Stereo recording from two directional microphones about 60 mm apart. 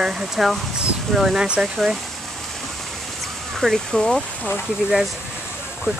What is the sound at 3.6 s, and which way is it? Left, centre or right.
Speech, centre.